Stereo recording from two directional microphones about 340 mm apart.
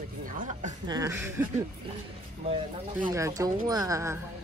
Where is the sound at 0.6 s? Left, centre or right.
Centre.